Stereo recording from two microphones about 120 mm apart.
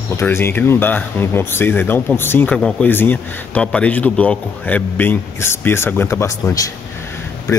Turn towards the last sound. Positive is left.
turn(degrees=25)  # may be behind; listen again after turning